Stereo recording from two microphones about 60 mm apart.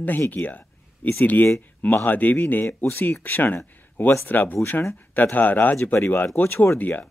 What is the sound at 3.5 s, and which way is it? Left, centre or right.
Speech, left.